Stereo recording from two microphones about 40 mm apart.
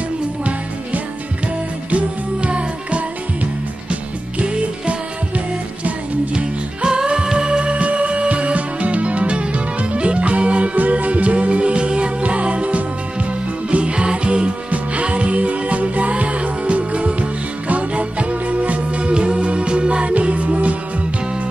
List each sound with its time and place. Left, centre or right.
1.9 s music: right
6.3 s music: right